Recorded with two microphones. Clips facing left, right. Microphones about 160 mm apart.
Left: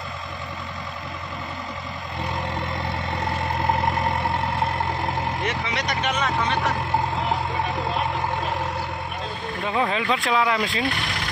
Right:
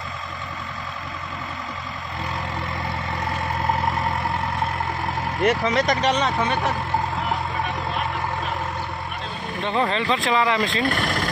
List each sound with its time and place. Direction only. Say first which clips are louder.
5.4 s speech: right 7 dB; 45° right (ahead or behind)
6.0 s speech: right 4 dB; 35° right (ahead or behind)
9.6 s speech: right 1 dB; 5° left (ahead or behind)
10.9 s speech: right 5 dB; 45° right (ahead or behind)